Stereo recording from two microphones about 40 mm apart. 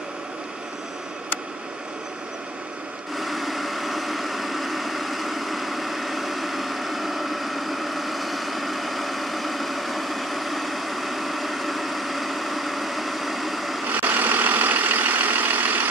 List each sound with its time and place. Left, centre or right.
3.2 s vehicle: centre
13.9 s vehicle: right